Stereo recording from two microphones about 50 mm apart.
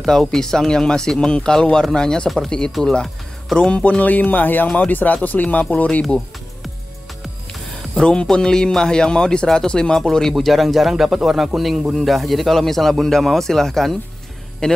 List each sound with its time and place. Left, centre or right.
0.0 s speech: centre; by 6.0 s left
7.9 s speech: centre
14.6 s speech: centre